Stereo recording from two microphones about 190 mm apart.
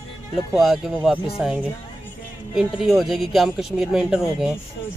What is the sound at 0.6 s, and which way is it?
Speech, centre (ahead or behind).